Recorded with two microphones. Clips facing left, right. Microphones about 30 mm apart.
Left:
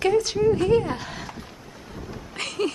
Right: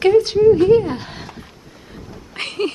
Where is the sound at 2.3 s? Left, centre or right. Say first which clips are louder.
Right 4 dB; right.